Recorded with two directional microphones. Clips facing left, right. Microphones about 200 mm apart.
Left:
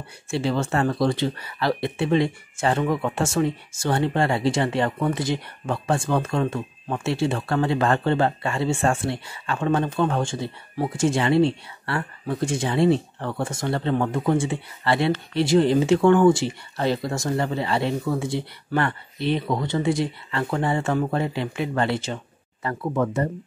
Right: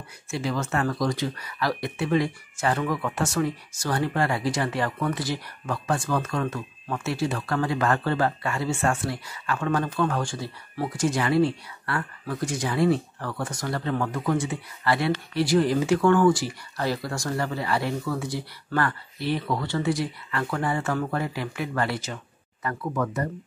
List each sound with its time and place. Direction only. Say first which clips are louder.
0.3 s speech: left 4 dB; 30° left (ahead or behind)